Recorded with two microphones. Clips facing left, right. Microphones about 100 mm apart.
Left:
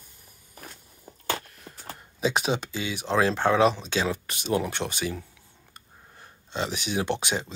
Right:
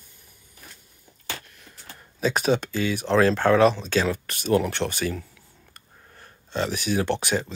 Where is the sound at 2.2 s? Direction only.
15° left (ahead or behind).